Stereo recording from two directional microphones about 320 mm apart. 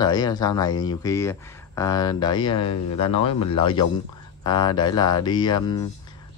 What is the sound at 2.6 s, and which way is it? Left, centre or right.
Speech, left.